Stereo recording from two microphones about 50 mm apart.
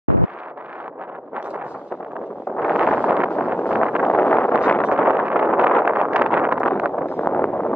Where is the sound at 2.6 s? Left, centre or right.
Right.